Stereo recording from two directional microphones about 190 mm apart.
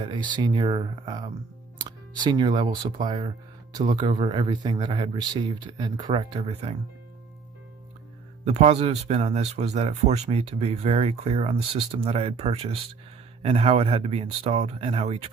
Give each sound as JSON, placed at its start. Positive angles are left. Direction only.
{"t": 0.1, "sound": "speech", "side_deg": -25}
{"t": 8.5, "sound": "speech", "side_deg": -35}